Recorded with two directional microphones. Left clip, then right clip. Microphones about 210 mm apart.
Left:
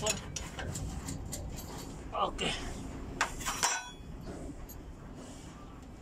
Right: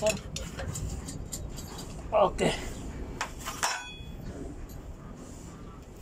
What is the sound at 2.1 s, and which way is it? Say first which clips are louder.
Speech: right 9 dB; 30° right (ahead or behind).